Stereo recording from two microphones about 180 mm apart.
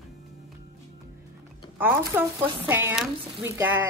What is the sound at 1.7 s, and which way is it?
A woman's voice, 10° right (ahead or behind).